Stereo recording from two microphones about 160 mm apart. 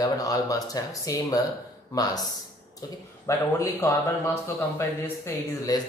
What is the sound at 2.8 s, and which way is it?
Speech, 20° left (ahead or behind).